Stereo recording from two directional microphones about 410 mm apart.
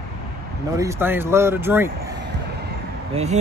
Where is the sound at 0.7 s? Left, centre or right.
Centre.